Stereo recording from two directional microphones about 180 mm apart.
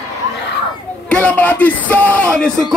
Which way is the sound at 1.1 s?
10° left (ahead or behind).